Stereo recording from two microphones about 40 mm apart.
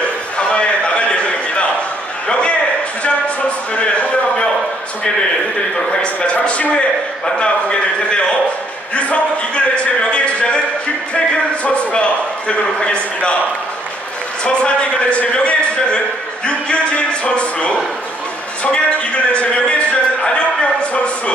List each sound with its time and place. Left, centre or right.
0.0 s a sound: left
6.2 s a man's voice: left
14.4 s a man's voice: left